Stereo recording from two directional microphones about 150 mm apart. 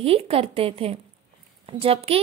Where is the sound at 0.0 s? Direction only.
40° right (ahead or behind).